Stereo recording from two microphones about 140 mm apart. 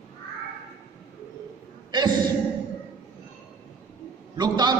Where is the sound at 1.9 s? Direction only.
30° right (ahead or behind).